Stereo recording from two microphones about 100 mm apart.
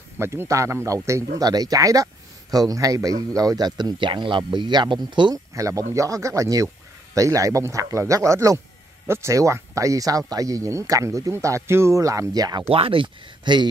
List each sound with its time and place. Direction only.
0.2 s a man's voice: 25° right (ahead or behind); by 5.3 s 50° right (ahead or behind)
5.3 s speech: 35° right (ahead or behind)
12.6 s speech: 65° right (ahead or behind); by 13.7 s 50° right (ahead or behind)